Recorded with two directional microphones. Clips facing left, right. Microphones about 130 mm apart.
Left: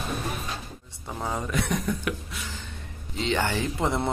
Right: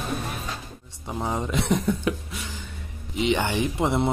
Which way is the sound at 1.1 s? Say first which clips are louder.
Right 3 dB; 15° right (ahead or behind).